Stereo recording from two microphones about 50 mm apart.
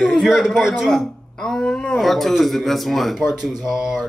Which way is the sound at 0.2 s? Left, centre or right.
Centre.